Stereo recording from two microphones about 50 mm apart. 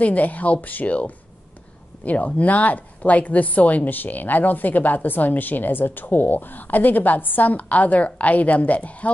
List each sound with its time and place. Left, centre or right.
0.0 s a woman's voice: left